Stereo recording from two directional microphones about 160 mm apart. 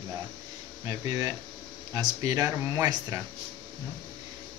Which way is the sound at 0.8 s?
20° right (ahead or behind).